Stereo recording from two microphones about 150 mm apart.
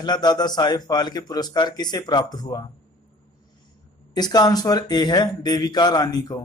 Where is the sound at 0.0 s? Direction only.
25° left (ahead or behind).